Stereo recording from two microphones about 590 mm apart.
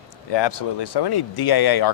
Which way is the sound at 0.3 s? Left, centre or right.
Left.